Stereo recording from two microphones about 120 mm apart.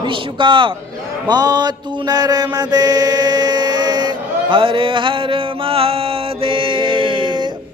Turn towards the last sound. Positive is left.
turn(degrees=-40)  # may be behind; listen again after turning